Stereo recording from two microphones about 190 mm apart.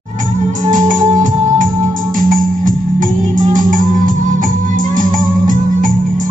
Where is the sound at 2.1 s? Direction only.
45° right (ahead or behind).